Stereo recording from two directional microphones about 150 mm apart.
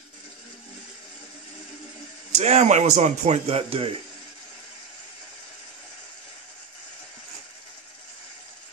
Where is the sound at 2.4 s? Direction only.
50° right (ahead or behind).